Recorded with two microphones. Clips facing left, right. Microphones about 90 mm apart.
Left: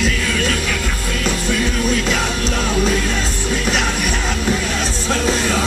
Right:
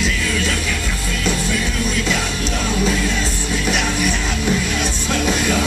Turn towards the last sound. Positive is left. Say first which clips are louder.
# left 1 dB
turn(degrees=35)  # may be behind; listen again after turning